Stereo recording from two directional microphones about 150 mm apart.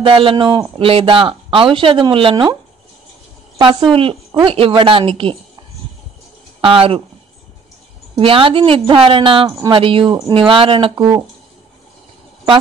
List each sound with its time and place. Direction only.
0.0 s speech: 35° right (ahead or behind)
3.5 s speech: 35° right (ahead or behind)
6.6 s speech: 40° right (ahead or behind)
8.2 s speech: 35° right (ahead or behind)